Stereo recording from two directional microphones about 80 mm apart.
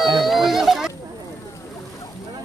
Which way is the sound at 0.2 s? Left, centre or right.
Centre.